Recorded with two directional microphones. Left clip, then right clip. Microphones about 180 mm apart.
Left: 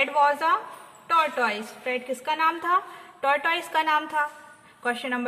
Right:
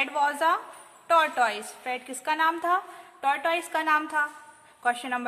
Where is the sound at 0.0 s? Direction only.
25° right (ahead or behind).